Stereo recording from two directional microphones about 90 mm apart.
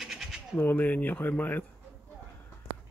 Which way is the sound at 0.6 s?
20° left (ahead or behind).